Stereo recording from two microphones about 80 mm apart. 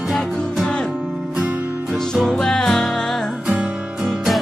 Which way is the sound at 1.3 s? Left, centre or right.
Centre.